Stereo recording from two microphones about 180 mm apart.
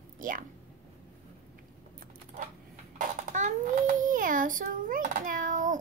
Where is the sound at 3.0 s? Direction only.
45° right (ahead or behind).